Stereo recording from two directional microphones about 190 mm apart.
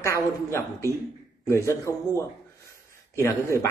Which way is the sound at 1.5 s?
15° left (ahead or behind).